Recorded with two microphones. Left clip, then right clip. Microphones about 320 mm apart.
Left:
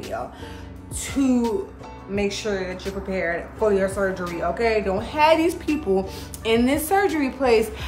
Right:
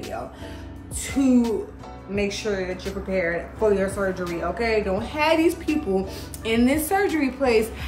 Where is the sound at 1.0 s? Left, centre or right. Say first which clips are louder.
Right 1 dB; centre.